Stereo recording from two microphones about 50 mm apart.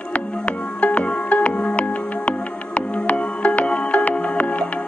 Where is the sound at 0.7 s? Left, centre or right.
Left.